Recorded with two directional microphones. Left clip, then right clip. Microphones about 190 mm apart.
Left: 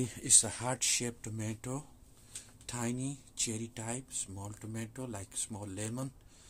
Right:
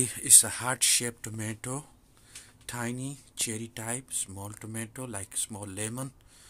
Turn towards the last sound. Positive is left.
turn(degrees=-5)  # may be behind; listen again after turning